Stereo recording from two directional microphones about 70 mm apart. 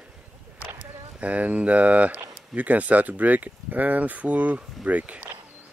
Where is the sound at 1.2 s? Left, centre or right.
Right.